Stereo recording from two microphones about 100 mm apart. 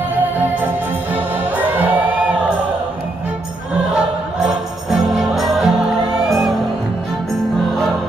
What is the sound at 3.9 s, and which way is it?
Jingle bell, 5° right (ahead or behind).